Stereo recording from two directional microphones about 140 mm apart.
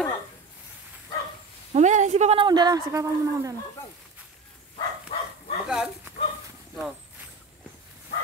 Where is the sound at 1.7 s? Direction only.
55° right (ahead or behind).